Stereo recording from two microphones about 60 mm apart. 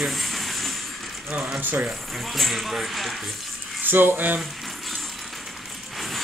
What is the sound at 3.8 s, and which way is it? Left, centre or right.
Speech, right.